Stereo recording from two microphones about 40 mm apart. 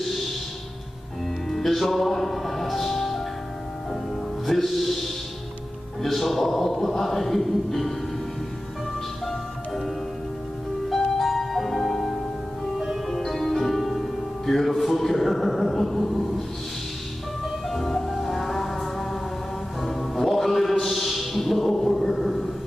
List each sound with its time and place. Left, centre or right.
0.0 s a sound: centre
1.5 s music: centre
4.5 s music: centre
10.9 s music: centre
12.7 s music: centre
13.1 s music: centre
17.6 s music: centre